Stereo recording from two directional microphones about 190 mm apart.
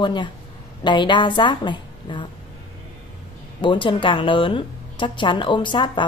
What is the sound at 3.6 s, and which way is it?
A woman's voice, 25° left (ahead or behind).